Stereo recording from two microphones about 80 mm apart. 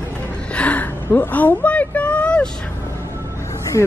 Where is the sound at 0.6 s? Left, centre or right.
Centre.